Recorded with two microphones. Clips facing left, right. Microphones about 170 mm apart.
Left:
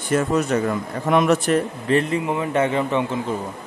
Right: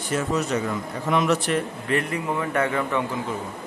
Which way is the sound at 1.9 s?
25° left (ahead or behind).